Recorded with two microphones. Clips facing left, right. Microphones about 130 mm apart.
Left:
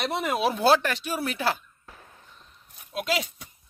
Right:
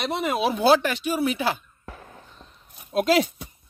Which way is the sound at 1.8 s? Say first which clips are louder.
Right 8 dB; 75° right (ahead or behind).